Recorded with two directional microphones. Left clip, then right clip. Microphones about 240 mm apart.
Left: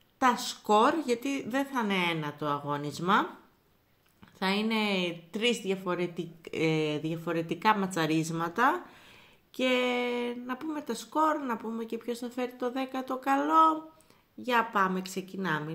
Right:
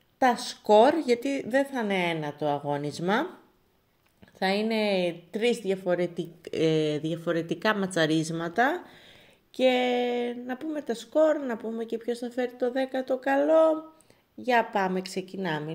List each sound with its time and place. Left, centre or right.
0.2 s a woman's voice: centre
4.4 s a woman's voice: centre